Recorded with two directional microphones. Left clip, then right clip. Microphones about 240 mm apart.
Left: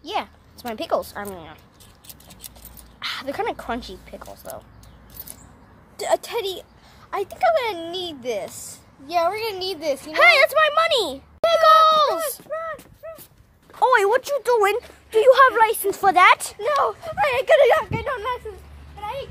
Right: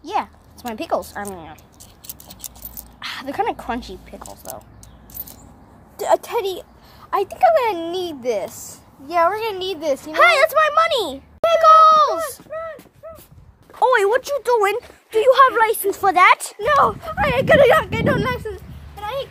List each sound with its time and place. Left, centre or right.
0.0 s a sound: centre
3.0 s speech: centre
5.9 s speech: centre
8.5 s speech: centre
9.0 s a child's voice: centre
10.1 s a sound: centre
12.4 s a sound: left
13.0 s dog: left
13.7 s speech: centre
16.5 s speech: right
17.8 s speech: right